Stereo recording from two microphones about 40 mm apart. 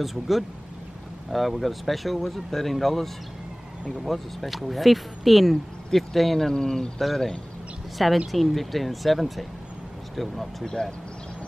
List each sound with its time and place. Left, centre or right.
0.0 s speech: centre
6.5 s speech: centre
7.0 s speech: centre
10.6 s speech: centre